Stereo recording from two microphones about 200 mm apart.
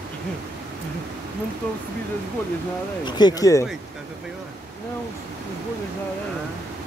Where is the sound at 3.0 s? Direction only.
20° left (ahead or behind).